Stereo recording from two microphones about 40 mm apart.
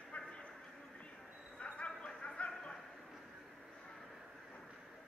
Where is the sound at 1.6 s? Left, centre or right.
Left.